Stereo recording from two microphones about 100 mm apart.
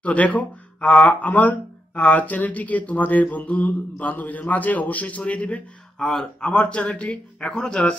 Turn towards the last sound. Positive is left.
turn(degrees=10)  # may be behind; listen again after turning